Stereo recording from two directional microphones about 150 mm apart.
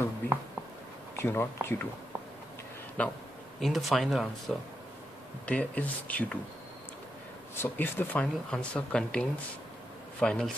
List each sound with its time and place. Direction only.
1.1 s speech: 15° left (ahead or behind)
3.0 s speech: 10° left (ahead or behind)
5.5 s speech: 10° left (ahead or behind)
7.5 s speech: 15° left (ahead or behind)